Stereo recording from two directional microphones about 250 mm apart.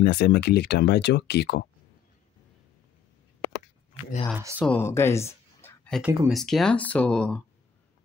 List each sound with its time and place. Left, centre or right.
0.0 s speech: left
4.3 s speech: centre
4.6 s speech: centre